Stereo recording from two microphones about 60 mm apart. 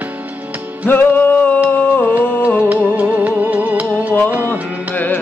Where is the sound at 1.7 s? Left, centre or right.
Left.